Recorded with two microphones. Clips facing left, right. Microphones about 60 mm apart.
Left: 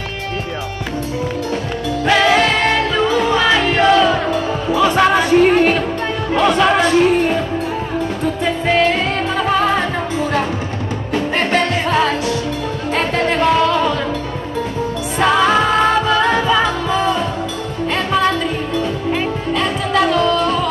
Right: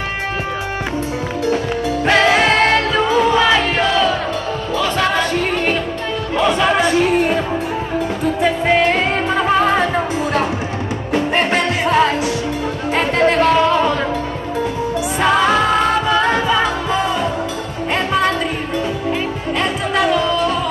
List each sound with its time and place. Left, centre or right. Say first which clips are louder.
2.0 s music: left 1 dB; right
2.4 s music: right 2 dB; centre
8.4 s music: right 1 dB; centre
13.3 s music: left 1 dB; centre
13.6 s music: right 1 dB; centre
15.1 s music: left 1 dB; centre
19.5 s music: left 1 dB; centre